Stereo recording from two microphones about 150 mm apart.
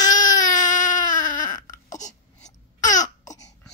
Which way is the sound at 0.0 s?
60° left (ahead or behind).